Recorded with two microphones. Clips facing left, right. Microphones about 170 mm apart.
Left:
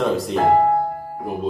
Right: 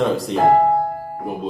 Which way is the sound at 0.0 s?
Centre (ahead or behind).